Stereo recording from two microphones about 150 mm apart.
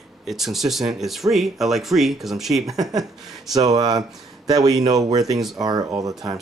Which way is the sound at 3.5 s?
25° right (ahead or behind).